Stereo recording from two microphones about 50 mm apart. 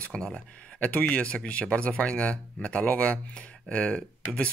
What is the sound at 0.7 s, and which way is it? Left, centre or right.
Speech, left.